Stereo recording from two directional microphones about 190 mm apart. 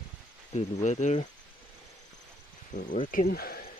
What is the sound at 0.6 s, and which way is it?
Speech, 40° left (ahead or behind).